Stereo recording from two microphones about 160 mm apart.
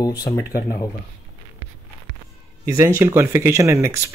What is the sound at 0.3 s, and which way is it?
Speech, 20° left (ahead or behind).